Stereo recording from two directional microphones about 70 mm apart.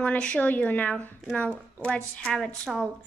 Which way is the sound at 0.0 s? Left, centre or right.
Centre.